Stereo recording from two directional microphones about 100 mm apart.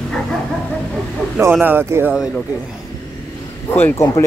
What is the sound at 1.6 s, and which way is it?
Speech, 25° right (ahead or behind).